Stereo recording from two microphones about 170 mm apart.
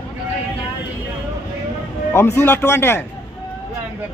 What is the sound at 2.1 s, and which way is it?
Speech, 15° left (ahead or behind).